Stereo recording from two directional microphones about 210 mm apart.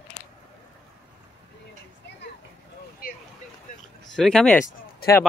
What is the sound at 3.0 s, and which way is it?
Vehicle, 45° left (ahead or behind).